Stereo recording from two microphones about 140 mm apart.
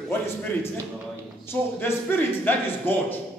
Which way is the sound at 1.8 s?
15° left (ahead or behind).